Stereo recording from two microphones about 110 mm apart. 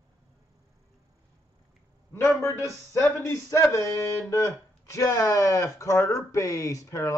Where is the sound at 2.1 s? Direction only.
20° left (ahead or behind).